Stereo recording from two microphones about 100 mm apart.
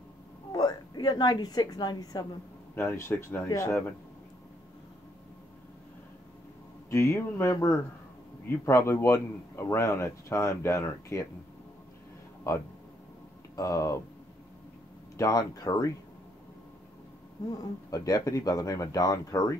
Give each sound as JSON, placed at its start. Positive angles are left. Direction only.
{"t": 0.5, "sound": "a woman's voice", "side_deg": 40}
{"t": 2.7, "sound": "a man's voice", "side_deg": 25}
{"t": 6.9, "sound": "a man's voice", "side_deg": 30}
{"t": 12.5, "sound": "speech", "side_deg": 35}
{"t": 15.1, "sound": "speech", "side_deg": 35}
{"t": 17.5, "sound": "speech", "side_deg": 35}